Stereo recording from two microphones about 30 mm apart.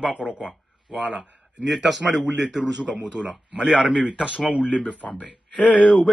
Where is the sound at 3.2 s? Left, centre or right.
Right.